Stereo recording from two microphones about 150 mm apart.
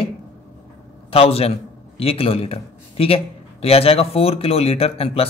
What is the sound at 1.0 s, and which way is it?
A man's voice, 40° left (ahead or behind).